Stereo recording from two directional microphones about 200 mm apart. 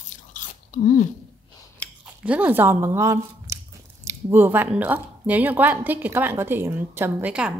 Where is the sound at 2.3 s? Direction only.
10° right (ahead or behind).